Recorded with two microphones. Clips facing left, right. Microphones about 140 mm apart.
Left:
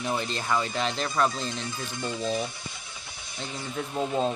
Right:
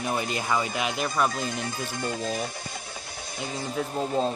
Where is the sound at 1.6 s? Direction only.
50° right (ahead or behind).